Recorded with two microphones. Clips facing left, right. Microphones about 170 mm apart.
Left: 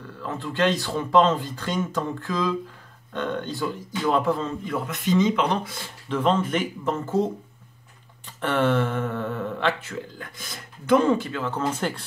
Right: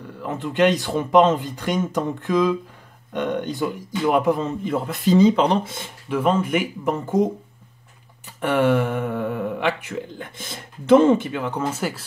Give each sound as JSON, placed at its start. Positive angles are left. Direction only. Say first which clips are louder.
{"t": 0.2, "sound": "a man's voice", "louder": "right 5 dB", "side_deg": -20}
{"t": 6.0, "sound": "speech", "louder": "right 2 dB", "side_deg": -10}
{"t": 8.4, "sound": "speech", "louder": "right 3 dB", "side_deg": -10}